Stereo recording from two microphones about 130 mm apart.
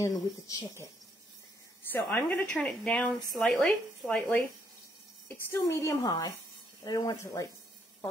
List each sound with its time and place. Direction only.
0.0 s a woman's voice: 25° left (ahead or behind)
1.8 s a woman's voice: 15° left (ahead or behind)
5.5 s a woman's voice: 20° left (ahead or behind)
6.0 s a woman's voice: 30° left (ahead or behind)